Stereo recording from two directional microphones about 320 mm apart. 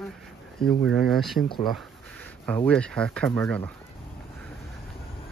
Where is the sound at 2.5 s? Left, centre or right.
Centre.